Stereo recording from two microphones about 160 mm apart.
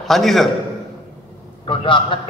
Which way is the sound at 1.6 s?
30° left (ahead or behind).